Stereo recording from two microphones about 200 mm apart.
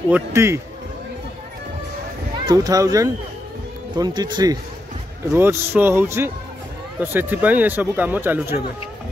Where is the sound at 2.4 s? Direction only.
20° right (ahead or behind).